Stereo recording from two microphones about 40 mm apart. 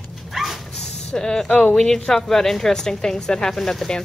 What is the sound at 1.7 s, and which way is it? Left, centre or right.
A woman's voice, centre.